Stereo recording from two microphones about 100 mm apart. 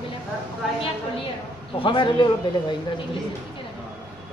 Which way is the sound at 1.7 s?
60° left (ahead or behind).